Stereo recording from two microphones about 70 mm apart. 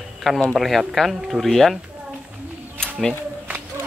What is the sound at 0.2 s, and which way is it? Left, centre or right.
Speech, centre.